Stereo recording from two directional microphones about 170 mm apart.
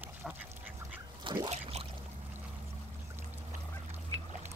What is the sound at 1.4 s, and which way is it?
Pour, 35° right (ahead or behind).